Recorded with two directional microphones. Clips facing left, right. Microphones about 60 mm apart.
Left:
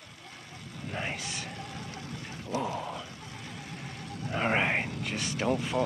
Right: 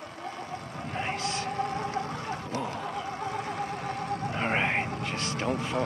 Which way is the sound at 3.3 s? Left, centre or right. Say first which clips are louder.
Right 12 dB; right.